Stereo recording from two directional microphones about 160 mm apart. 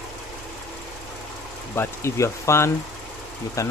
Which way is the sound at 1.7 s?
15° left (ahead or behind).